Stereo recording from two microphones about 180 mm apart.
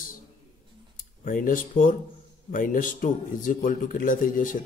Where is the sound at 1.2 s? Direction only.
50° left (ahead or behind).